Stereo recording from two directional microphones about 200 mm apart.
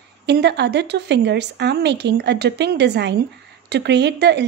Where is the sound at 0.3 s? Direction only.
55° right (ahead or behind).